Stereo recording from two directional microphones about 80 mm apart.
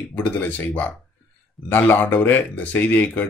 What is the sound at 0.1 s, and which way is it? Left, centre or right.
Speech, left.